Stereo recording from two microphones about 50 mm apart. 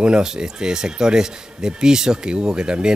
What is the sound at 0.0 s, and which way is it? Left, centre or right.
A man's voice, centre.